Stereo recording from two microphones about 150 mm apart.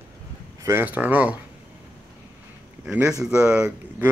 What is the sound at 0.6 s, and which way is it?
Speech, 15° right (ahead or behind).